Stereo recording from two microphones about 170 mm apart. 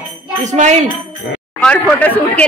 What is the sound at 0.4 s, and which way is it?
Speech, 45° right (ahead or behind).